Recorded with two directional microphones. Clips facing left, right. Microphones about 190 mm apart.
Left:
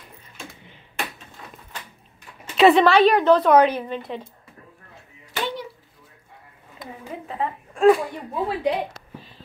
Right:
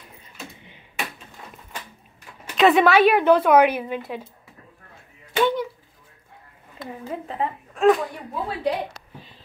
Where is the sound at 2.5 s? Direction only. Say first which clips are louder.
Left 1 dB; centre (ahead or behind).